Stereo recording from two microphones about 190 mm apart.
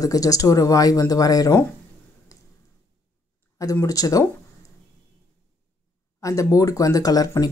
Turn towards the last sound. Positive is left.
turn(degrees=20)  # may be behind; listen again after turning